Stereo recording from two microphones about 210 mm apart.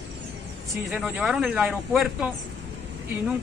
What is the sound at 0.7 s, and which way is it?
A woman's voice, centre (ahead or behind).